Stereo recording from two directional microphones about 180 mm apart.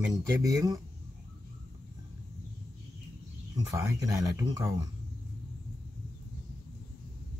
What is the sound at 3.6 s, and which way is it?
Speech, 20° right (ahead or behind).